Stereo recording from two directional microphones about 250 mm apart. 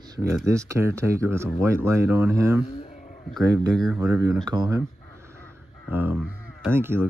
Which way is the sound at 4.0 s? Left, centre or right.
Centre.